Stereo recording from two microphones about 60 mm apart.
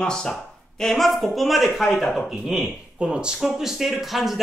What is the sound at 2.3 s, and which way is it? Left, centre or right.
Speech, centre.